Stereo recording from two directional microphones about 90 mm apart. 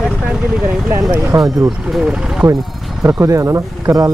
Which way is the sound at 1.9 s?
10° right (ahead or behind).